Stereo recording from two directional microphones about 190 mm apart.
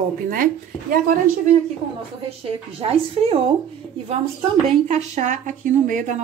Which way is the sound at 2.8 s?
30° right (ahead or behind).